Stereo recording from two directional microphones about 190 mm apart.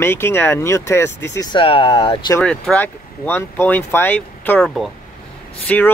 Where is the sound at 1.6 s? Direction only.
30° left (ahead or behind).